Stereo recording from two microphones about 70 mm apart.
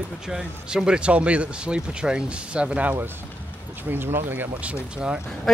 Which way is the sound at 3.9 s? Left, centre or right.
Right.